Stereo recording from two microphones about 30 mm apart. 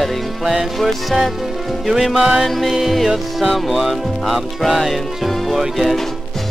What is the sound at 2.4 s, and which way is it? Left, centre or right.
Speech, centre.